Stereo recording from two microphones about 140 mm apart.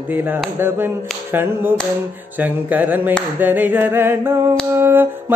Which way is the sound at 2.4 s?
10° right (ahead or behind).